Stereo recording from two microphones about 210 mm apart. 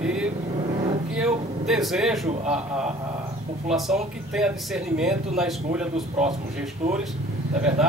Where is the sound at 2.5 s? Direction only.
5° right (ahead or behind).